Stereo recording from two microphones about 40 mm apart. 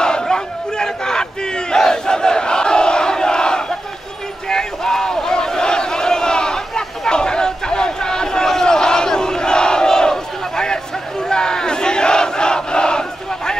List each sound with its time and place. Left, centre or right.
0.0 s battle cry: centre